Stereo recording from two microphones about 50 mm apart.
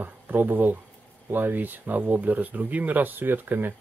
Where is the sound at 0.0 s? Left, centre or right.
Right.